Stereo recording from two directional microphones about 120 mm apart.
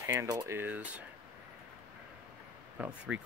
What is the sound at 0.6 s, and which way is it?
Speech, 15° right (ahead or behind).